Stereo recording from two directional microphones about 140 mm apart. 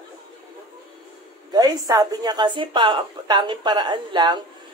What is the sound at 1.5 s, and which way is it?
Speech, 30° right (ahead or behind).